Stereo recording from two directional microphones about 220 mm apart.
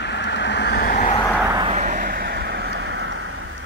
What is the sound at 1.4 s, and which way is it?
Vehicle, 15° right (ahead or behind).